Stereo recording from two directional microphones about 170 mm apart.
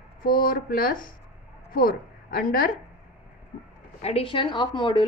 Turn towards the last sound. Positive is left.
turn(degrees=25)  # may be behind; listen again after turning